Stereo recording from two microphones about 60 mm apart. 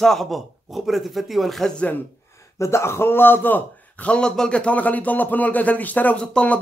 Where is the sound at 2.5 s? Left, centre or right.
Left.